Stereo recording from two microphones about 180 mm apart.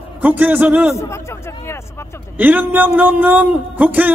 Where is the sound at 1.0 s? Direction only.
15° left (ahead or behind).